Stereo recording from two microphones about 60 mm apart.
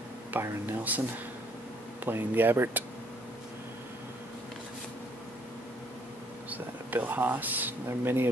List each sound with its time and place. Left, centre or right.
0.3 s speech: right
2.0 s speech: right
6.5 s speech: right